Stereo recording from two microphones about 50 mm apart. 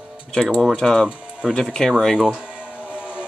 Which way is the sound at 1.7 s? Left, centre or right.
Centre.